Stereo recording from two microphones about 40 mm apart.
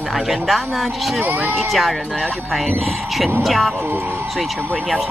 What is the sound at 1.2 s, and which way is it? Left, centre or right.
Speech, right.